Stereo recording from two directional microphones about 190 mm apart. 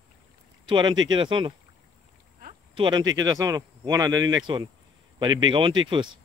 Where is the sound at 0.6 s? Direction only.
25° right (ahead or behind).